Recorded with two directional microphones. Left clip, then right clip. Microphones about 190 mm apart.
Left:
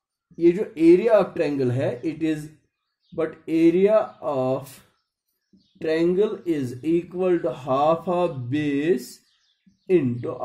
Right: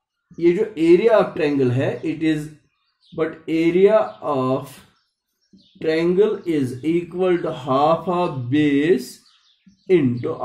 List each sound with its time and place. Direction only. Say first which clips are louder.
0.4 s speech: right 2 dB; 45° left (ahead or behind)